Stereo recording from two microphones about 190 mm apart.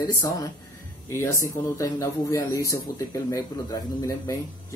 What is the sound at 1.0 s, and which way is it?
Speech, 15° left (ahead or behind).